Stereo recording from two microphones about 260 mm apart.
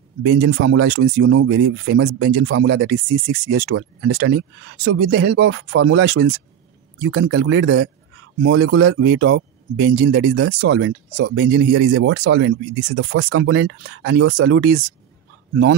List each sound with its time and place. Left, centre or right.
0.2 s speech: right